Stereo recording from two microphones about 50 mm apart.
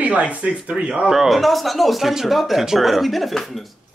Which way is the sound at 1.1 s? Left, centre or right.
Centre.